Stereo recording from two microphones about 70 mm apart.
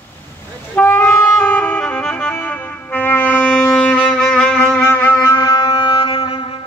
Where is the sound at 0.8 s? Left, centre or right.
Left; by 4.8 s centre.